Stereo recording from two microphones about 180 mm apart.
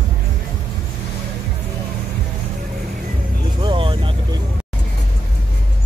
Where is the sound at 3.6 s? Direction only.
30° right (ahead or behind).